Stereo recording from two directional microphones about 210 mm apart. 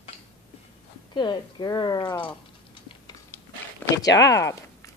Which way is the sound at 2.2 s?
25° left (ahead or behind).